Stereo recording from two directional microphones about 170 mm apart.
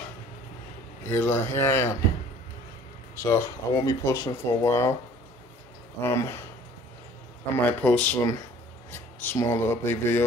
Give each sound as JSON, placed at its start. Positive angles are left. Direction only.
{"t": 1.1, "sound": "speech", "side_deg": 15}
{"t": 3.2, "sound": "speech", "side_deg": 15}
{"t": 5.9, "sound": "speech", "side_deg": 15}
{"t": 7.6, "sound": "speech", "side_deg": 10}